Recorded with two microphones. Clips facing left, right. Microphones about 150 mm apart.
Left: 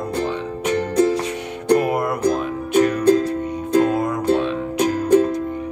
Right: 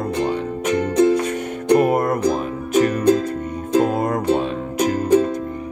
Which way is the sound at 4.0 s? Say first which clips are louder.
Even; 50° right (ahead or behind).